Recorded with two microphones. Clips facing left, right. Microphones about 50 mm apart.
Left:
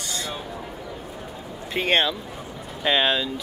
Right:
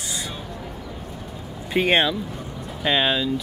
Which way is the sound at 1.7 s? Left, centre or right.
Centre.